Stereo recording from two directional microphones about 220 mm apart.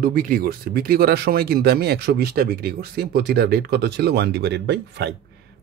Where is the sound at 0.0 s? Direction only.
40° right (ahead or behind).